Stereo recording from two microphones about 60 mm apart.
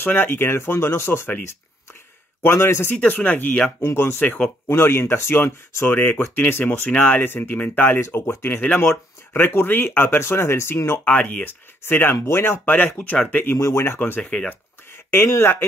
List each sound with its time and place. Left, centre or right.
0.0 s speech: left
2.4 s speech: left
2.9 s speech: left
3.8 s speech: left
5.9 s speech: left
8.0 s speech: left
8.5 s speech: left
9.3 s speech: left
10.9 s speech: left
12.2 s speech: left
13.6 s speech: left
13.9 s speech: left
15.2 s speech: left